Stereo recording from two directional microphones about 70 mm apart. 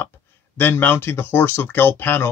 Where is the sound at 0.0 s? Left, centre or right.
Left.